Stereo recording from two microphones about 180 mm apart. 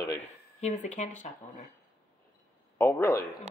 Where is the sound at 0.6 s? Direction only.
40° left (ahead or behind).